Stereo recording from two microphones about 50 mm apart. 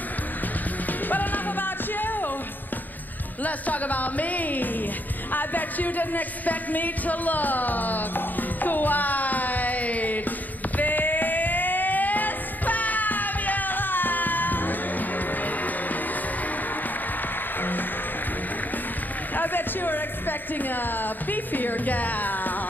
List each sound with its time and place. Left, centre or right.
1.0 s music: left
3.4 s music: left
5.3 s speech: left
10.8 s music: left
17.6 s music: left
19.3 s music: left